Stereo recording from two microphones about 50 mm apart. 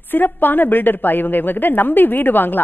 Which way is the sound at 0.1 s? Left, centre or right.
Left.